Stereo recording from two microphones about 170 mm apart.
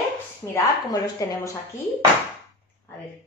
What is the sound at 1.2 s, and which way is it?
Speech, 20° left (ahead or behind).